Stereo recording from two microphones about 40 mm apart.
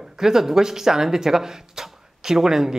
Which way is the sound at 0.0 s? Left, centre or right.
Centre.